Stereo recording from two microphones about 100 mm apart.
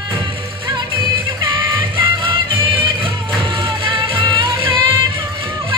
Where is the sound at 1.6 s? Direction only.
50° right (ahead or behind).